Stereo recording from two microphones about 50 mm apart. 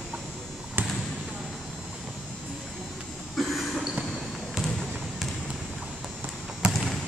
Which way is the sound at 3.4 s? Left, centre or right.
Centre.